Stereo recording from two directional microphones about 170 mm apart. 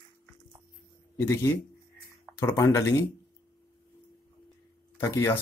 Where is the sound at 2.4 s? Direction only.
15° left (ahead or behind).